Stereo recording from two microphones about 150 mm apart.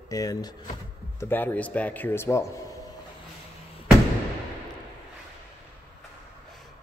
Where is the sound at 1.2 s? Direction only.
15° left (ahead or behind).